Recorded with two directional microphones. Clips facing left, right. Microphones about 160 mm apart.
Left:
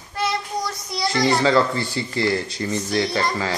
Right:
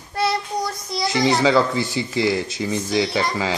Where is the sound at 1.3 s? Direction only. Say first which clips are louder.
Right 1 dB; 5° right (ahead or behind).